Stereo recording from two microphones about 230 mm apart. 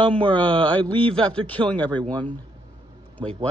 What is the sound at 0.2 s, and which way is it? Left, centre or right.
Speech, right.